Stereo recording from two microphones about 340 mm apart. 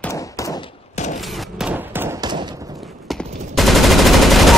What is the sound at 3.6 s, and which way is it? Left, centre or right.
Gunshot, centre.